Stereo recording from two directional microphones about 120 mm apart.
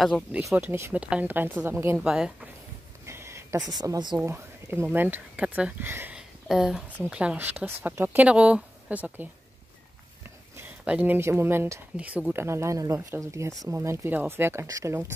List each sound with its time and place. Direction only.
0.6 s speech: 20° right (ahead or behind)
2.0 s speech: 5° right (ahead or behind)
3.1 s a sound: 20° right (ahead or behind)
3.7 s speech: 30° right (ahead or behind)
4.2 s speech: 20° right (ahead or behind)
6.1 s a sound: 5° right (ahead or behind)
7.0 s speech: 10° right (ahead or behind)
10.9 s speech: 10° right (ahead or behind)
11.1 s speech: 20° right (ahead or behind)